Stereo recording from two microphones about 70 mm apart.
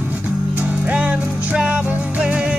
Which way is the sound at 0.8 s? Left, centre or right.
Right.